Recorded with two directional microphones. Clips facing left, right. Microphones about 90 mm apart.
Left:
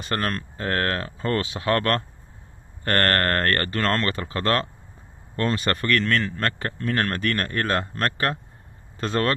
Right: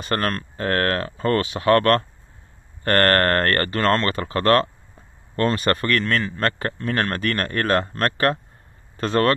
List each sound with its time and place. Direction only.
0.0 s speech: 50° right (ahead or behind)
0.6 s speech: 65° right (ahead or behind)
2.8 s speech: 45° right (ahead or behind)
4.1 s speech: 55° right (ahead or behind)
5.5 s speech: 45° right (ahead or behind); by 9.3 s 60° right (ahead or behind)